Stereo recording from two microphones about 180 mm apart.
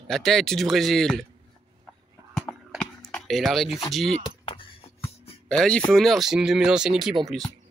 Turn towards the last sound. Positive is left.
turn(degrees=0)  # may be behind; listen again after turning